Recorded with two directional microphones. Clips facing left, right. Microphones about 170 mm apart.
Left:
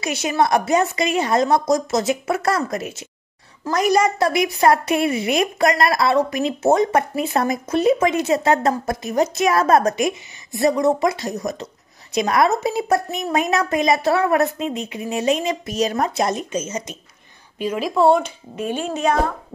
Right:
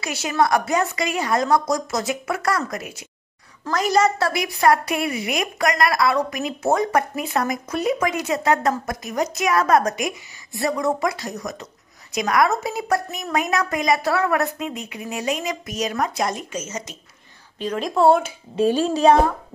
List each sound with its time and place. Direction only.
0.0 s a woman's voice: 20° left (ahead or behind)
3.6 s a woman's voice: 15° left (ahead or behind)
17.6 s a woman's voice: 5° left (ahead or behind)
18.6 s a child's voice: 35° right (ahead or behind)